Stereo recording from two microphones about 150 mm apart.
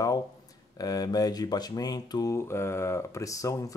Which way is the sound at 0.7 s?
25° left (ahead or behind).